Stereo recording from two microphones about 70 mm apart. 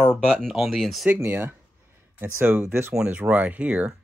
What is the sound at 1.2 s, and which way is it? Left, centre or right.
Speech, right.